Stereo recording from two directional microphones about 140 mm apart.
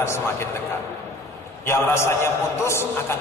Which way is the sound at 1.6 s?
20° left (ahead or behind).